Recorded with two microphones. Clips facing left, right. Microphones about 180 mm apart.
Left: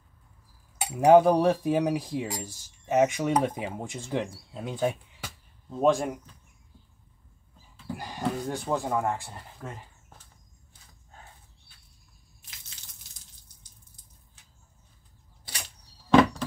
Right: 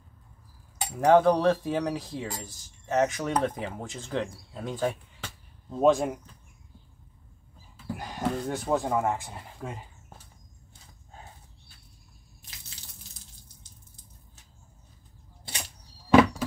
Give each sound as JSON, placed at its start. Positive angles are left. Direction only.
{"t": 0.7, "sound": "cutlery", "side_deg": 5}
{"t": 2.4, "sound": "speech", "side_deg": 5}
{"t": 7.7, "sound": "speech", "side_deg": -5}
{"t": 12.4, "sound": "drip", "side_deg": -35}
{"t": 16.1, "sound": "a sound", "side_deg": -5}